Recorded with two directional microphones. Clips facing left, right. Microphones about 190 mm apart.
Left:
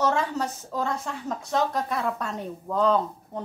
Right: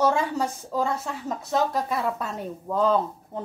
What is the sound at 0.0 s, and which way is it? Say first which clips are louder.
Speech: right 2 dB; 10° right (ahead or behind).